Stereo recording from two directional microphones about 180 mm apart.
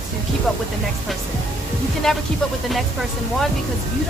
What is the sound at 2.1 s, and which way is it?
Speech, centre (ahead or behind).